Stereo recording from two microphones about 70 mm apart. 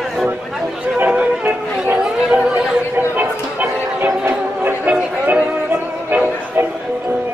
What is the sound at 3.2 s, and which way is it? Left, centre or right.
Music, right.